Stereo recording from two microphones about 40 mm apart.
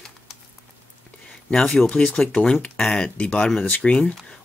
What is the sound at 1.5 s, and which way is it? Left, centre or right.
Speech, centre.